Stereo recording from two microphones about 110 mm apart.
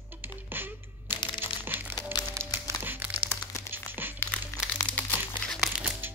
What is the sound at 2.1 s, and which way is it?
Music, 35° left (ahead or behind).